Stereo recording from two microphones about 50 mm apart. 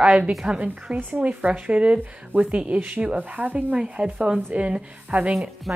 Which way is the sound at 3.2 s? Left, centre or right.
Right.